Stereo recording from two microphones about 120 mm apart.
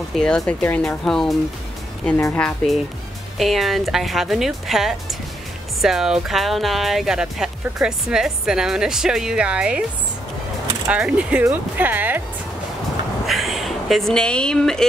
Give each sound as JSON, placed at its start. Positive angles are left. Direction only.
{"t": 0.1, "sound": "speech", "side_deg": 5}
{"t": 2.1, "sound": "speech", "side_deg": 20}
{"t": 2.4, "sound": "speech", "side_deg": 0}
{"t": 10.9, "sound": "speech", "side_deg": -10}
{"t": 13.3, "sound": "speech", "side_deg": 0}